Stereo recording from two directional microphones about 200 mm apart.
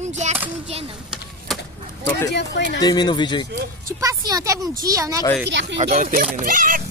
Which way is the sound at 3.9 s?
15° right (ahead or behind).